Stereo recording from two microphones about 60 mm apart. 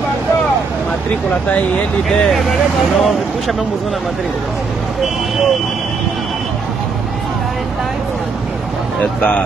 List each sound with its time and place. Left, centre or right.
2.0 s speech: centre
9.0 s speech: centre